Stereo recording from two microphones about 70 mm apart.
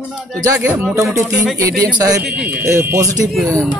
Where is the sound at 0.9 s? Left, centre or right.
Right.